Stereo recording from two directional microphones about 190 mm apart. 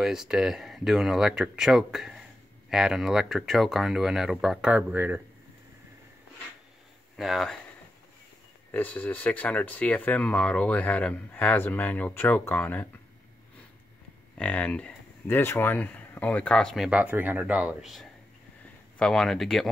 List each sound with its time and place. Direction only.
0.0 s speech: centre (ahead or behind)
7.2 s speech: centre (ahead or behind)
8.7 s speech: 10° left (ahead or behind)
14.4 s speech: 5° left (ahead or behind)